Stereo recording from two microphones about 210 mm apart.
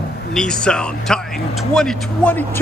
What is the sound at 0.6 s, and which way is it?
Speech, 5° left (ahead or behind).